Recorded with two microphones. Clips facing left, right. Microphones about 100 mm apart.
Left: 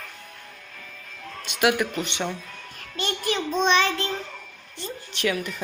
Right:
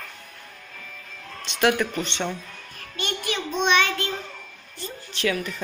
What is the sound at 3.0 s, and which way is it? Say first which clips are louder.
Child singing: left 2 dB; 35° left (ahead or behind).